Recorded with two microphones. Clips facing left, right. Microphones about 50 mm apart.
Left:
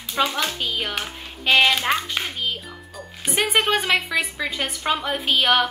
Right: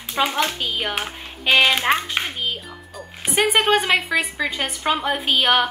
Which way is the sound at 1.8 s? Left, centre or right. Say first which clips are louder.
Right 3 dB; right.